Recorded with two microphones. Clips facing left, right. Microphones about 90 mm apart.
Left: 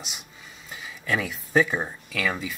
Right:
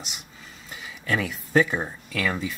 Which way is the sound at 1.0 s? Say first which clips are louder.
Right 1 dB; centre (ahead or behind).